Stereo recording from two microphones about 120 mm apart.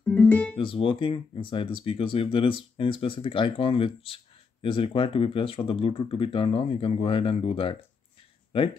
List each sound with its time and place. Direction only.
0.0 s music: 15° left (ahead or behind)
0.6 s speech: 45° left (ahead or behind)